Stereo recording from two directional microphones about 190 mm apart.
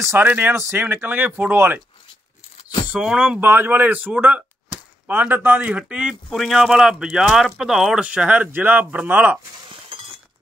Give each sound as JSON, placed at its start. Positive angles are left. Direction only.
{"t": 0.1, "sound": "speech", "side_deg": -10}
{"t": 2.9, "sound": "a man's voice", "side_deg": -5}
{"t": 9.9, "sound": "a sound", "side_deg": -30}